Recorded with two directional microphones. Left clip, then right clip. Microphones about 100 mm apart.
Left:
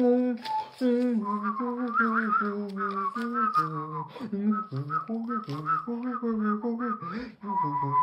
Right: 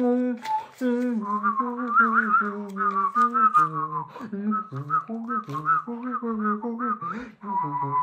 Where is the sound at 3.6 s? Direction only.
15° left (ahead or behind).